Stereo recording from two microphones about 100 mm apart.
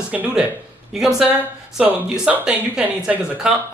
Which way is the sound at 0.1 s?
10° right (ahead or behind).